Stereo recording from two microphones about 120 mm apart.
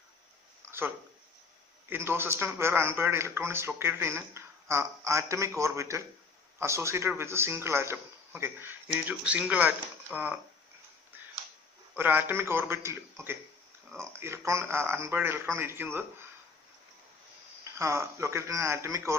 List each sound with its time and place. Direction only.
0.7 s a sound: 20° right (ahead or behind)
1.9 s speech: 20° right (ahead or behind)
11.9 s speech: 20° right (ahead or behind)
17.7 s speech: 25° right (ahead or behind)